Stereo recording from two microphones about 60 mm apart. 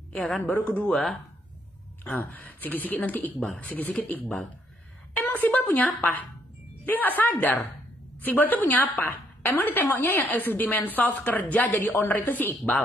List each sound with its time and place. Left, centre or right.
0.4 s a woman's voice: left
0.9 s speech: centre
2.0 s a woman's voice: left